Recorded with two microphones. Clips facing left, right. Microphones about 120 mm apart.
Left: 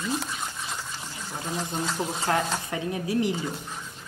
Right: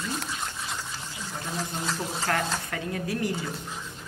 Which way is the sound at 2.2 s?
20° left (ahead or behind).